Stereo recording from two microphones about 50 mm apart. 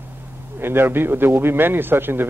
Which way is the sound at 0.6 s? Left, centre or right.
Right.